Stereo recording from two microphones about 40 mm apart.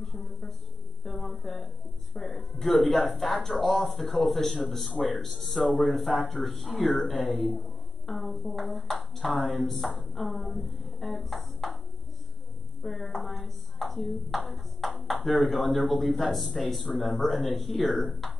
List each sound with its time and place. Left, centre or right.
0.0 s music: centre
1.0 s a sound: centre
2.1 s a woman's voice: centre
12.8 s speech: centre